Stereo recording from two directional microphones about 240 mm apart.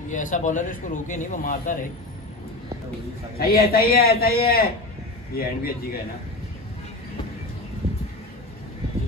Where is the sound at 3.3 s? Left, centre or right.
Left.